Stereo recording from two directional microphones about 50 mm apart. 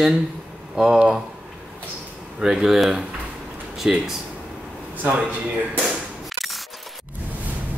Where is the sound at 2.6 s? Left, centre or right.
Centre.